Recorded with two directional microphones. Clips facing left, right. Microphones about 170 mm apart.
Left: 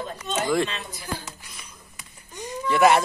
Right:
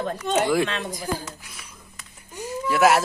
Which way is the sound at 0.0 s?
60° right (ahead or behind).